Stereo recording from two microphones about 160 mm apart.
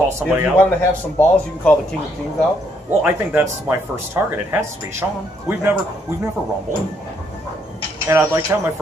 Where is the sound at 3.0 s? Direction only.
15° right (ahead or behind).